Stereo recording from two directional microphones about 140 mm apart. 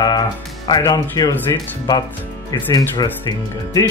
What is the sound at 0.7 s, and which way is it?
Speech, 25° left (ahead or behind).